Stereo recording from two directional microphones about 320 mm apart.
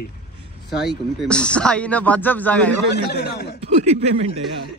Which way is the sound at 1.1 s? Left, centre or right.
Centre.